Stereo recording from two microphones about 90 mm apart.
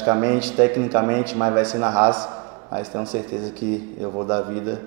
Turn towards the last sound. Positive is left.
turn(degrees=-20)  # may be behind; listen again after turning